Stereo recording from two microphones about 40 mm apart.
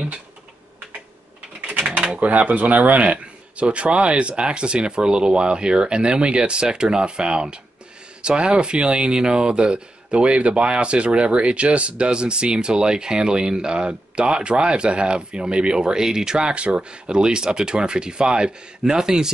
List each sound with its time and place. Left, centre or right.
2.1 s speech: right; by 19.3 s centre